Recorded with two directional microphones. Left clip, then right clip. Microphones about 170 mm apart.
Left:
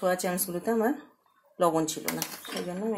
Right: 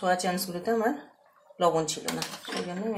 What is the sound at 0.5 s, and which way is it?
Speech, 40° left (ahead or behind).